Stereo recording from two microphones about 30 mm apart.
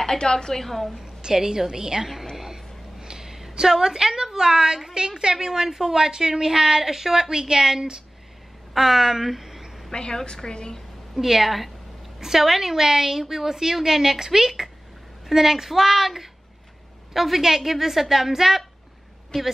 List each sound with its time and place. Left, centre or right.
0.2 s a woman's voice: left
0.6 s a woman's voice: centre
1.0 s a woman's voice: right
2.3 s a sound: centre
3.5 s a woman's voice: centre
5.0 s a woman's voice: right
5.3 s a woman's voice: centre
5.9 s a woman's voice: right
8.7 s a woman's voice: centre
9.9 s a woman's voice: left
11.1 s a woman's voice: centre
12.2 s a woman's voice: centre